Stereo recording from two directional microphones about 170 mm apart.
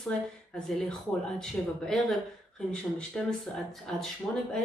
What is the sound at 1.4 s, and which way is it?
Speech, centre (ahead or behind).